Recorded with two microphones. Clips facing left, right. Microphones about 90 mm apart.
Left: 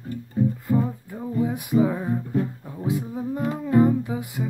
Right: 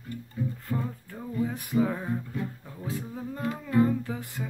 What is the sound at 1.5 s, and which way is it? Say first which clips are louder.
Female singing: left 5 dB; 15° left (ahead or behind).